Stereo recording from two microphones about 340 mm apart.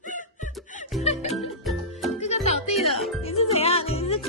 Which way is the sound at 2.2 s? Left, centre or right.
Centre.